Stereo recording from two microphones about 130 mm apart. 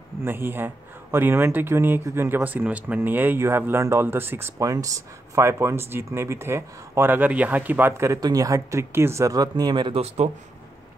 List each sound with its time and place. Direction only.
0.2 s speech: 15° right (ahead or behind); by 10.3 s 55° right (ahead or behind)